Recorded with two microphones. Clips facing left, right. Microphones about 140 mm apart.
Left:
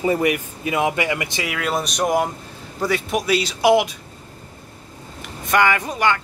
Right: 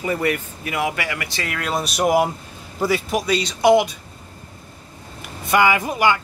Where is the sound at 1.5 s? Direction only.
Centre (ahead or behind).